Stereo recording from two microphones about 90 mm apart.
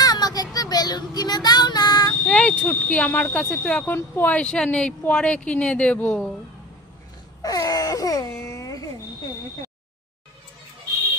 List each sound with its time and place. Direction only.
0.0 s child singing: 45° left (ahead or behind)
2.2 s speech: 15° left (ahead or behind)
7.4 s wail: 40° left (ahead or behind)